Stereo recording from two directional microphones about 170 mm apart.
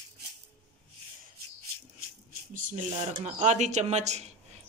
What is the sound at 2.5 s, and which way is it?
Speech, 50° right (ahead or behind).